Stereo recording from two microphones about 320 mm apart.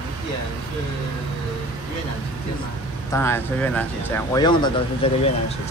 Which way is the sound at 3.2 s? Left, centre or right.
Centre.